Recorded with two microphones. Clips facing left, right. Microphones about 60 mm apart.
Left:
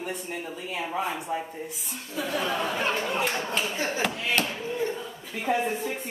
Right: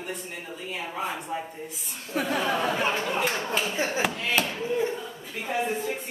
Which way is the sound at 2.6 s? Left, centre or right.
Centre.